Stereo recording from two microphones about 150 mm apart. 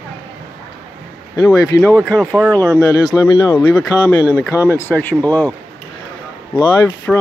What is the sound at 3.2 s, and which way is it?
Speech, 30° left (ahead or behind).